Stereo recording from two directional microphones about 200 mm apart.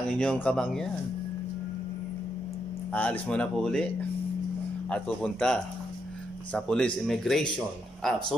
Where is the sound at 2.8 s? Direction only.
5° left (ahead or behind).